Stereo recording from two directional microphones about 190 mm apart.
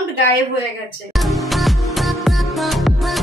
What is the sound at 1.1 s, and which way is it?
Music, centre (ahead or behind).